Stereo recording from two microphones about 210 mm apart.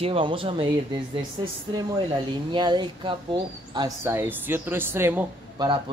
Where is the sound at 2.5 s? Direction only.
20° right (ahead or behind).